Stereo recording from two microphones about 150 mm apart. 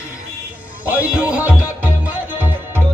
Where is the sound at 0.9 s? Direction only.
10° right (ahead or behind).